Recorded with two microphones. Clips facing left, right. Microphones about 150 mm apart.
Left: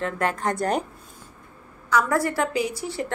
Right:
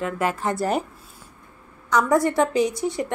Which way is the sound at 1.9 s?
20° right (ahead or behind).